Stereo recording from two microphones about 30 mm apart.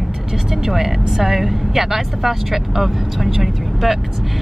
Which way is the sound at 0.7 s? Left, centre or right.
Centre.